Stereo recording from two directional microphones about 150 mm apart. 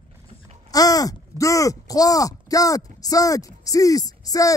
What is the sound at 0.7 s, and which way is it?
Speech, 25° left (ahead or behind).